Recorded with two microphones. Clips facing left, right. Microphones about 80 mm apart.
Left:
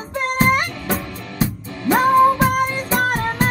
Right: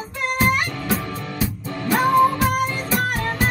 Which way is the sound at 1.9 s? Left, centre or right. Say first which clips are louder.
Left 3 dB; left.